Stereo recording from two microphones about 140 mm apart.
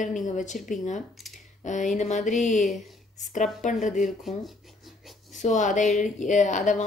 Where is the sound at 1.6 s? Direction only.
60° left (ahead or behind).